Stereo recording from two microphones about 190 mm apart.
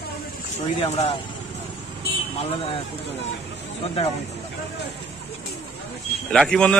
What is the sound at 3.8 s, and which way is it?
Speech, 35° left (ahead or behind).